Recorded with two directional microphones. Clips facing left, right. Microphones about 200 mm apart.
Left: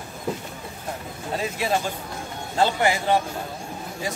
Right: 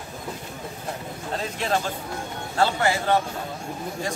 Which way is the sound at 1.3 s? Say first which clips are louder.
Left 1 dB; 10° left (ahead or behind).